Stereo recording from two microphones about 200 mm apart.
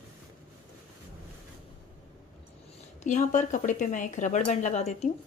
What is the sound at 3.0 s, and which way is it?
Speech, 40° left (ahead or behind).